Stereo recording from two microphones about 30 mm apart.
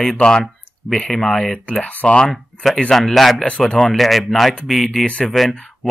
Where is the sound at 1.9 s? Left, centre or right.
Left.